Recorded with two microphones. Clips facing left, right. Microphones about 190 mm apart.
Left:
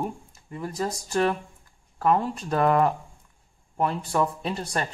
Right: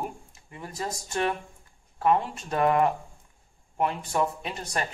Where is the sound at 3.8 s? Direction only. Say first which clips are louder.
Left 2 dB; 35° left (ahead or behind).